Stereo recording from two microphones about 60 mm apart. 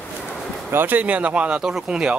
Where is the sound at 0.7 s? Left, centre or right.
Right; by 2.2 s centre.